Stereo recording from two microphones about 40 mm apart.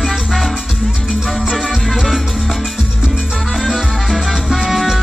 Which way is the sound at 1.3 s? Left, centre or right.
Centre.